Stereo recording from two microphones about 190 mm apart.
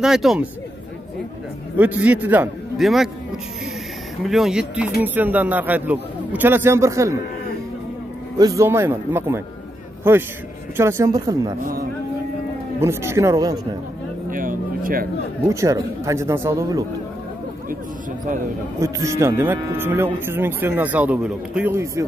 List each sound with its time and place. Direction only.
0.0 s speech: centre (ahead or behind)
1.8 s speech: 10° right (ahead or behind)
4.2 s speech: centre (ahead or behind)
8.4 s speech: 15° right (ahead or behind)
12.8 s speech: 15° right (ahead or behind)
14.3 s vehicle: 45° right (ahead or behind)
15.4 s speech: 15° right (ahead or behind)
18.8 s speech: 15° right (ahead or behind)